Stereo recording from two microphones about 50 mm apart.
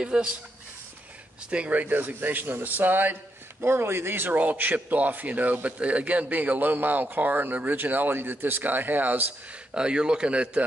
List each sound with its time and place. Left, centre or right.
0.0 s speech: centre
1.5 s a man's voice: right
3.6 s a man's voice: right
9.8 s a man's voice: centre